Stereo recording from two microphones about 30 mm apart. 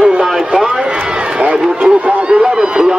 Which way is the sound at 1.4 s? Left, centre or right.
Right.